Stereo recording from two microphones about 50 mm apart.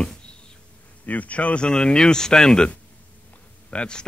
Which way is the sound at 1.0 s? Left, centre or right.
Left.